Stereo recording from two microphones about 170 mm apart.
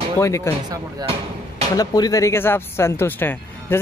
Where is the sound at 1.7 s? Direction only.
20° left (ahead or behind).